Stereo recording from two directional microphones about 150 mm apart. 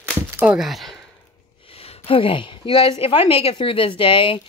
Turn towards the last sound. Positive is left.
turn(degrees=35)  # may be behind; listen again after turning